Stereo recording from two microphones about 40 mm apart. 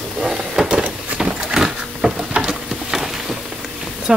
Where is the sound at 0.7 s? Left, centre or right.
Right.